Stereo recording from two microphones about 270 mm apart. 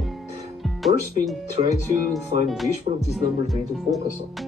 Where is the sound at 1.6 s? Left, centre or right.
Centre.